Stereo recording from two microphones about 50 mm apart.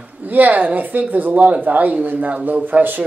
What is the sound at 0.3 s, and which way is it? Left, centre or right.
Speech, right.